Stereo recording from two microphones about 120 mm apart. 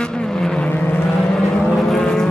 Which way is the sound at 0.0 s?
5° left (ahead or behind).